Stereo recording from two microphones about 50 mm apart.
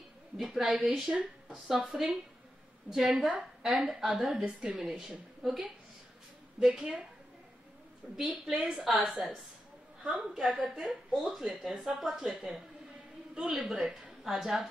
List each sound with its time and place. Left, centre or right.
0.4 s a woman's voice: centre
3.3 s a woman's voice: centre
6.7 s a woman's voice: right
8.2 s a woman's voice: centre
10.4 s a woman's voice: centre